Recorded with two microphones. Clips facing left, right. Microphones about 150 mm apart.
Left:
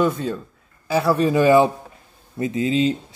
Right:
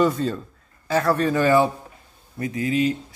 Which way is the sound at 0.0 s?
5° left (ahead or behind).